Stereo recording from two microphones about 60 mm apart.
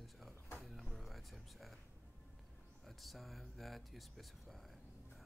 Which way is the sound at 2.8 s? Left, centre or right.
Centre.